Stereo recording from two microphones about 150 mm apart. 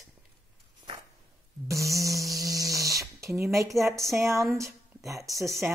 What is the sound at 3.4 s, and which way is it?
Speech, 20° right (ahead or behind).